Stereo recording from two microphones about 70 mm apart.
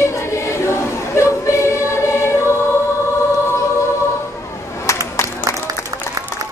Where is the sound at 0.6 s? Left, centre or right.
Left.